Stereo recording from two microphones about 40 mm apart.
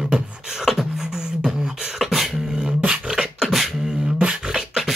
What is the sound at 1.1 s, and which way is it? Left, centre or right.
Beatboxing, centre.